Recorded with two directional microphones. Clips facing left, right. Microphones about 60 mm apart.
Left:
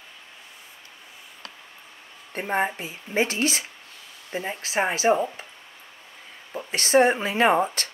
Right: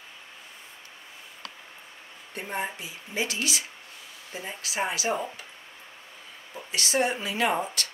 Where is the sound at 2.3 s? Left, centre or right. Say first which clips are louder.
Left 7 dB; left.